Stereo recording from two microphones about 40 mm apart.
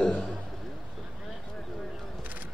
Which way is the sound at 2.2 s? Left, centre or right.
Right.